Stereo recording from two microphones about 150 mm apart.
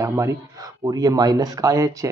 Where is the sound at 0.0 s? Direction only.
20° right (ahead or behind).